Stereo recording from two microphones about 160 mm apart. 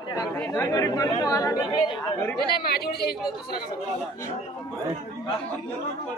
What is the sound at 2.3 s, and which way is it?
Speech, 75° left (ahead or behind).